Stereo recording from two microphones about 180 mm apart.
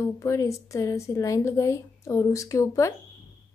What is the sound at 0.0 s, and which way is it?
A woman's voice, 15° left (ahead or behind).